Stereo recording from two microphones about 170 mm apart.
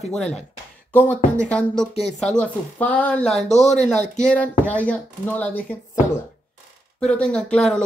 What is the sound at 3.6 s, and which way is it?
Speech, 45° left (ahead or behind).